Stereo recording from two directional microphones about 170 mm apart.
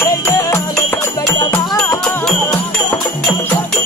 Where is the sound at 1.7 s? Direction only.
5° left (ahead or behind).